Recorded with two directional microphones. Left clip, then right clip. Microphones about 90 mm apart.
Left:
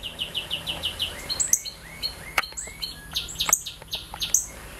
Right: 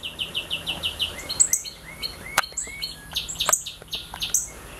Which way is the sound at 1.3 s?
Centre (ahead or behind).